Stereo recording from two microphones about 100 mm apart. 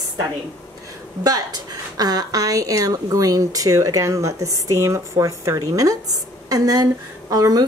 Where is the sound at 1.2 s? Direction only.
40° right (ahead or behind).